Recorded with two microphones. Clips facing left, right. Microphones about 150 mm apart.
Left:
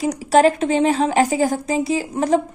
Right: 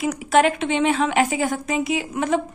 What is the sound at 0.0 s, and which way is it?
A woman's voice, 35° left (ahead or behind).